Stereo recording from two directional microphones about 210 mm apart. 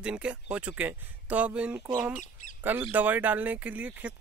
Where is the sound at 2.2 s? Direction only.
40° left (ahead or behind).